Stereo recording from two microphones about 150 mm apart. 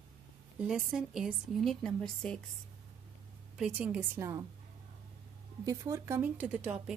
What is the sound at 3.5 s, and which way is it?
Speech, 5° right (ahead or behind).